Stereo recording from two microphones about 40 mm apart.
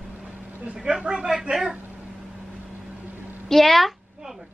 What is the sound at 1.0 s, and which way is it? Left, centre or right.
Speech, centre.